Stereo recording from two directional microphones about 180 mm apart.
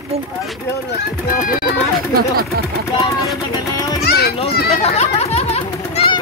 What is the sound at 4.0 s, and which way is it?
Children playing, 65° left (ahead or behind).